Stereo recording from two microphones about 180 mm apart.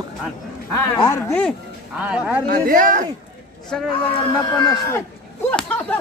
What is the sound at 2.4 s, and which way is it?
Speech, 50° right (ahead or behind).